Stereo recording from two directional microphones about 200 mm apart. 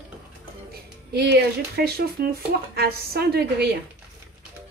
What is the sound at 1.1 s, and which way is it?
A woman's voice, 55° right (ahead or behind).